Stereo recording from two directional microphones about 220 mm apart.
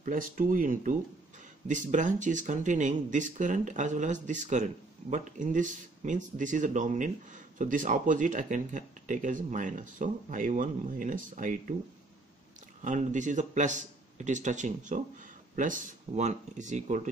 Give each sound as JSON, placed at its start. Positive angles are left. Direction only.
{"t": 0.0, "sound": "speech", "side_deg": -35}
{"t": 12.8, "sound": "speech", "side_deg": -35}